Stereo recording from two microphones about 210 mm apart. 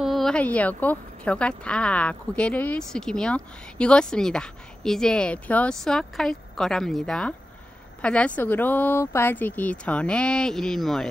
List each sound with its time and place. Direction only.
0.0 s a woman's voice: centre (ahead or behind)